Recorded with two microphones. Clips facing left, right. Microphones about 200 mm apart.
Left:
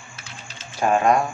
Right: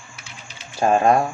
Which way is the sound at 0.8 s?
30° right (ahead or behind).